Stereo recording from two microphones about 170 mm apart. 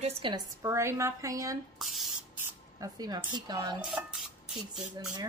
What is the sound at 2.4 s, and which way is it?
Speech, 20° right (ahead or behind).